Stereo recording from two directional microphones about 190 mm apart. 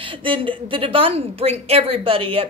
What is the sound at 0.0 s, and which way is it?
A woman's voice, 25° right (ahead or behind).